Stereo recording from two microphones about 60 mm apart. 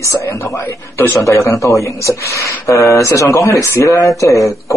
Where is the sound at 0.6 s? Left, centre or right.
Left.